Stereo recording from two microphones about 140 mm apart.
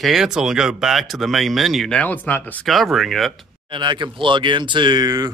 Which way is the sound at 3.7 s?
35° right (ahead or behind).